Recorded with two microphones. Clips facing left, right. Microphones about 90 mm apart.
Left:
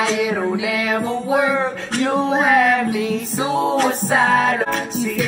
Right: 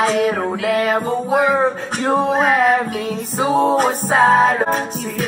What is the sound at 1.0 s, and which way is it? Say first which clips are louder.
Music: right 2 dB; 45° right (ahead or behind).